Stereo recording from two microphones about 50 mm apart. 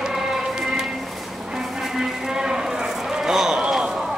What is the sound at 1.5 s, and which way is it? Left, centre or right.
Clip-clop, centre.